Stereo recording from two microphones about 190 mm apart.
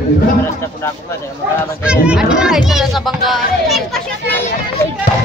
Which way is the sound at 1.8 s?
5° right (ahead or behind).